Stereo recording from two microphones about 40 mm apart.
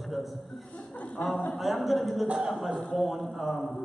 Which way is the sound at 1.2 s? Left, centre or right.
Left.